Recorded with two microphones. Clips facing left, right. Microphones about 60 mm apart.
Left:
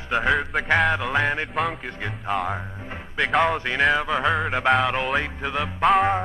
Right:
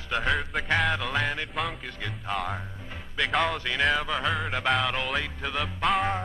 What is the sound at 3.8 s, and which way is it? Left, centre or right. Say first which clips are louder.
Music: left 5 dB; centre.